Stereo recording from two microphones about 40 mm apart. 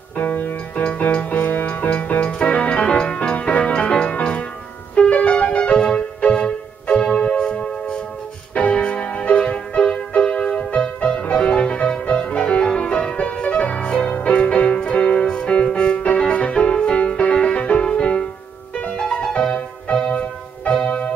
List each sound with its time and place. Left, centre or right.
0.1 s music: left
2.8 s music: left
3.9 s music: centre; by 21.1 s left